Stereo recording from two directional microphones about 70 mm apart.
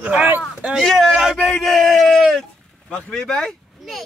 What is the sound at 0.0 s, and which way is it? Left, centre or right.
Speech, right.